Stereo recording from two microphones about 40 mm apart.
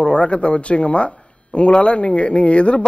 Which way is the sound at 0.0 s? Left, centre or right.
Left.